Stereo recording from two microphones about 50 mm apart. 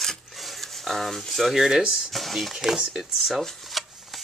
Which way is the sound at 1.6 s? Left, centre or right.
Centre.